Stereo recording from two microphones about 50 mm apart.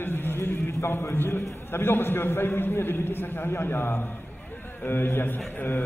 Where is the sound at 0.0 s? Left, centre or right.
Left.